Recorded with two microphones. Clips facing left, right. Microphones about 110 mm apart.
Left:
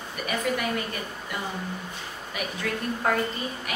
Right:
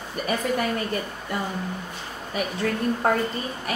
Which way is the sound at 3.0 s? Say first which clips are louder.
Right 2 dB; 35° right (ahead or behind).